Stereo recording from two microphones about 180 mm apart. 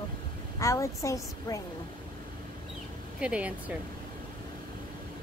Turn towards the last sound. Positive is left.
turn(degrees=-5)  # may be behind; listen again after turning